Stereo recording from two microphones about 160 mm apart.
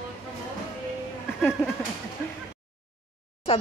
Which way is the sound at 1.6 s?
15° left (ahead or behind).